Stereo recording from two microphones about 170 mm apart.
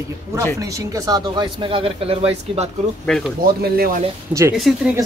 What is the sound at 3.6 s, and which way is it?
Speech, 60° right (ahead or behind).